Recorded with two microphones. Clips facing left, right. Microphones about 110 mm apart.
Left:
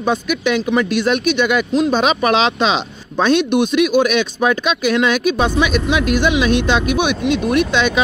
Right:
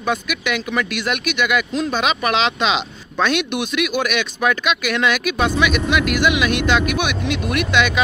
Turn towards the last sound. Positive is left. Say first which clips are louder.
# left 3 dB
turn(degrees=25)  # may be behind; listen again after turning